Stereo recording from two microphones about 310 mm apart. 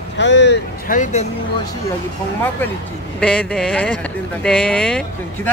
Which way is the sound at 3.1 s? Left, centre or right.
Centre.